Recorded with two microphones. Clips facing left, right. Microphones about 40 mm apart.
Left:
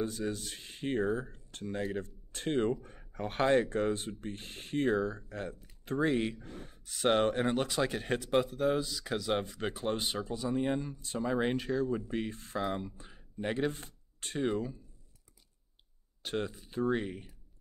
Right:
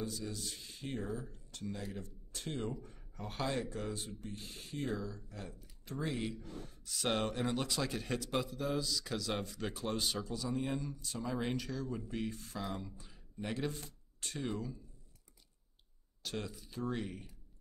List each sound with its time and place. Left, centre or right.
0.0 s speech: left
16.2 s speech: left